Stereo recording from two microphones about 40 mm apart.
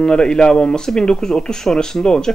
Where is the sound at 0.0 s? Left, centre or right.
Left.